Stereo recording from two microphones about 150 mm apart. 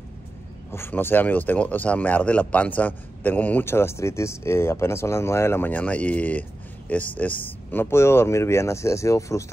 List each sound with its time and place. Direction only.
0.7 s speech: 15° left (ahead or behind)